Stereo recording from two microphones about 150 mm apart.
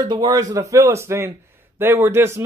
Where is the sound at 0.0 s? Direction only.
30° right (ahead or behind).